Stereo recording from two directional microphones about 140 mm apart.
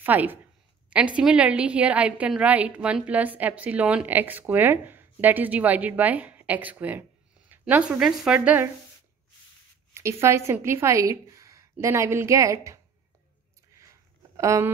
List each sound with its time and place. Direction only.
0.0 s a woman's voice: 10° right (ahead or behind)
9.9 s a woman's voice: 20° right (ahead or behind)
14.3 s speech: 20° right (ahead or behind)